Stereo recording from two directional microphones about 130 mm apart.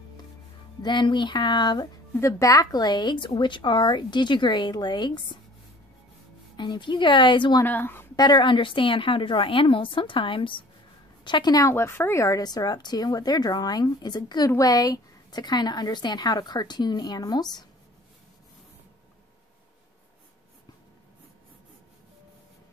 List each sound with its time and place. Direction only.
0.8 s a woman's voice: 35° left (ahead or behind)
2.1 s a woman's voice: 20° left (ahead or behind)
6.5 s a woman's voice: 35° left (ahead or behind)
7.6 s a woman's voice: 15° left (ahead or behind)
8.2 s a woman's voice: 35° left (ahead or behind)